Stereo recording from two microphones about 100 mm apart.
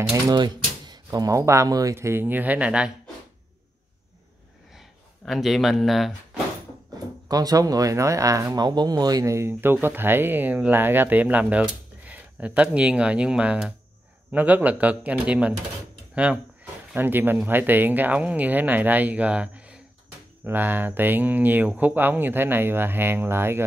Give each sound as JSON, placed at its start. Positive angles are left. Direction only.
{"t": 0.1, "sound": "speech", "side_deg": -40}
{"t": 4.7, "sound": "speech", "side_deg": 0}
{"t": 7.2, "sound": "speech", "side_deg": -40}
{"t": 16.9, "sound": "speech", "side_deg": -20}